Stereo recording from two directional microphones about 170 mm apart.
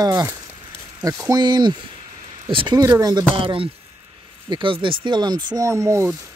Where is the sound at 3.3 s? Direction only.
30° right (ahead or behind).